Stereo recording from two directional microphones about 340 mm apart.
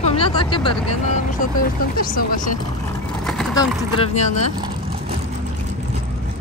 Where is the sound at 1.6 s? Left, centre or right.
Left.